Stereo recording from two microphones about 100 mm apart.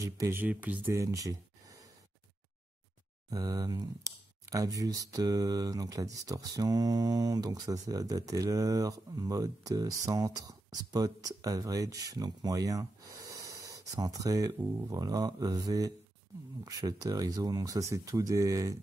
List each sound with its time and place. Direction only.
0.0 s speech: 30° right (ahead or behind)
0.4 s speech: 15° right (ahead or behind)
0.9 s a sound: 35° right (ahead or behind)
3.3 s speech: 40° right (ahead or behind)